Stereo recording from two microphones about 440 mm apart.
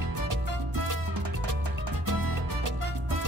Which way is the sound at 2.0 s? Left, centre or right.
Right.